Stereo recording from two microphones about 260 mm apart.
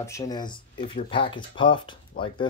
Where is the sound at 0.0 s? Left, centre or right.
Centre.